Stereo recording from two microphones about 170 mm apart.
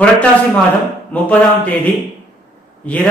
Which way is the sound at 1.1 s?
10° left (ahead or behind).